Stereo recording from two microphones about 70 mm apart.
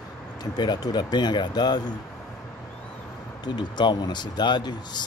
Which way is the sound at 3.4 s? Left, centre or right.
Left.